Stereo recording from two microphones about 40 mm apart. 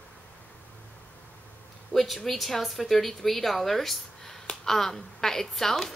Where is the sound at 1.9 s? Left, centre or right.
Centre.